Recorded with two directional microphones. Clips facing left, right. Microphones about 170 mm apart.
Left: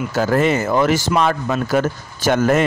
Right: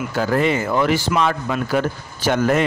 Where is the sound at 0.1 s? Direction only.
45° left (ahead or behind).